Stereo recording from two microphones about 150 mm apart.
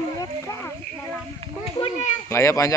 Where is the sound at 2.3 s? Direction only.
20° left (ahead or behind).